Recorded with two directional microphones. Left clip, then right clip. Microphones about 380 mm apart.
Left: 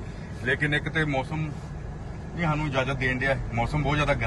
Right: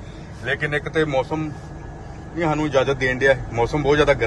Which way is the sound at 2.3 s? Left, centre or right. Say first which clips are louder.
Right 8 dB; right.